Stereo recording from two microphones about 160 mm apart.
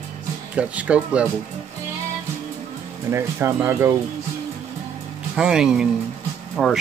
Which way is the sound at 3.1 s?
15° right (ahead or behind).